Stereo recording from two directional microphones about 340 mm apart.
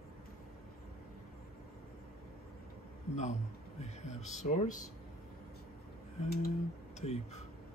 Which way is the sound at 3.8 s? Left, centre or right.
Centre.